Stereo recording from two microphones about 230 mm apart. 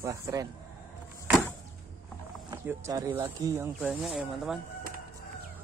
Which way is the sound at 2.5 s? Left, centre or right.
Centre.